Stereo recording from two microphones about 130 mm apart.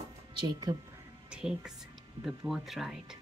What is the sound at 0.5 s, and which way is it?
Speech, 30° right (ahead or behind).